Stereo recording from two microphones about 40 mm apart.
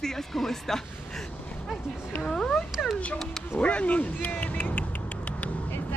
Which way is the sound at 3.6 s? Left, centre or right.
Left.